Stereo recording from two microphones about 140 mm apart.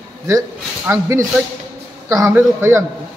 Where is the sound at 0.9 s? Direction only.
20° right (ahead or behind).